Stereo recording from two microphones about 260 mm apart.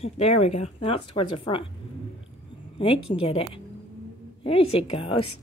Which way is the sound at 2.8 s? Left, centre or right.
Left.